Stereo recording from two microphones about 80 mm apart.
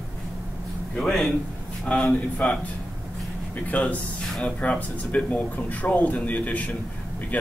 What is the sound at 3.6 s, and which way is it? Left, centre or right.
Speech, centre.